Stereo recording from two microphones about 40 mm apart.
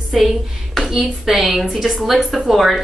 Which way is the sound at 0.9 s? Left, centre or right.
Centre.